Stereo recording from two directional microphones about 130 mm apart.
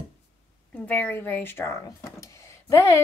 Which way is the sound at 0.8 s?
15° left (ahead or behind).